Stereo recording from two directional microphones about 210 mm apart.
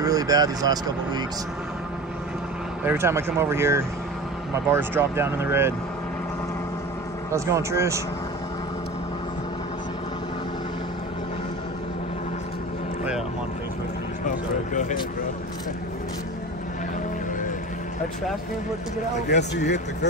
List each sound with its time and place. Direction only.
0.0 s speech: 15° right (ahead or behind)
2.8 s speech: 10° right (ahead or behind)
7.2 s speech: 15° right (ahead or behind)
14.2 s a sound: 35° left (ahead or behind)
19.3 s speech: 55° left (ahead or behind)